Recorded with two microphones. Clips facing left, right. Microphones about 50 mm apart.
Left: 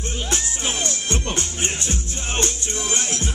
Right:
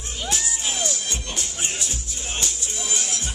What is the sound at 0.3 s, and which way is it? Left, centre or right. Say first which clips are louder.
Music: left 1 dB; left.